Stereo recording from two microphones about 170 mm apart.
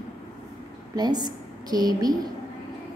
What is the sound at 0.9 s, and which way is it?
A woman's voice, 25° right (ahead or behind).